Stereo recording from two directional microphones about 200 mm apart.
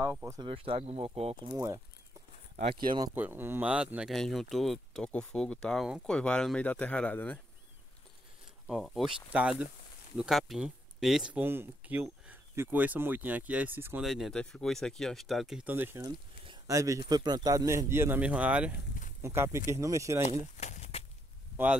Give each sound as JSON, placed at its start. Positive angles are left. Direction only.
{"t": 0.0, "sound": "speech", "side_deg": -15}
{"t": 0.4, "sound": "speech", "side_deg": -25}
{"t": 2.5, "sound": "speech", "side_deg": -30}
{"t": 3.2, "sound": "speech", "side_deg": -10}
{"t": 8.6, "sound": "speech", "side_deg": 0}
{"t": 16.4, "sound": "a sound", "side_deg": -15}
{"t": 17.1, "sound": "speech", "side_deg": -20}
{"t": 20.2, "sound": "a sound", "side_deg": 35}